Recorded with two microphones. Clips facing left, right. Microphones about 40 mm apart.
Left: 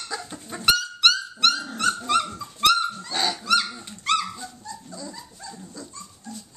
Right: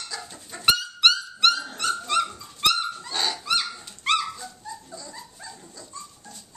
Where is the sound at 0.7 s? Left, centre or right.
Centre.